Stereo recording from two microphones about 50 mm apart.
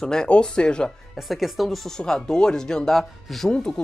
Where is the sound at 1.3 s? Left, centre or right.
Centre.